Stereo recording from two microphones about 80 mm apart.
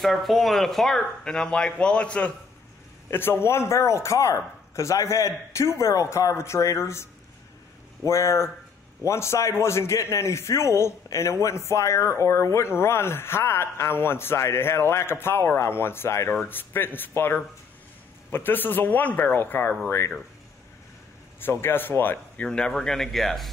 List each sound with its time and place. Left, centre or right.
0.0 s speech: centre
3.1 s speech: left
21.4 s speech: left
22.4 s speech: centre